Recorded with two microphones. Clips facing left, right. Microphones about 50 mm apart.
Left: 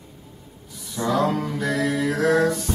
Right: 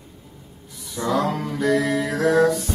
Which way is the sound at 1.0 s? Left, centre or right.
Centre.